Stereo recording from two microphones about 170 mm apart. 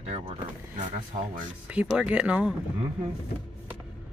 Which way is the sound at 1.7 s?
5° right (ahead or behind).